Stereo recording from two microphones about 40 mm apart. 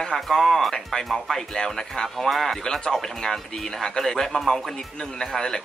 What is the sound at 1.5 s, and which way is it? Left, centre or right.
Speech, centre.